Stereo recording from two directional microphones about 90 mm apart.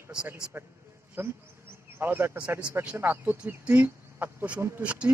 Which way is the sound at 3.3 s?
15° right (ahead or behind).